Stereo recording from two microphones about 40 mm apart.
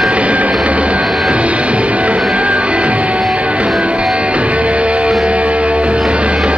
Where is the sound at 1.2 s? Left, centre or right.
Right.